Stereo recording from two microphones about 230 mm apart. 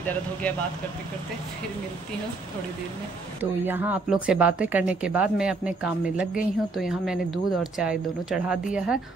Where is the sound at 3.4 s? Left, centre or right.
Centre.